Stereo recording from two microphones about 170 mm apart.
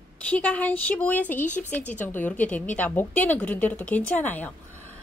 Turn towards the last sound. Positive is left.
turn(degrees=10)  # may be behind; listen again after turning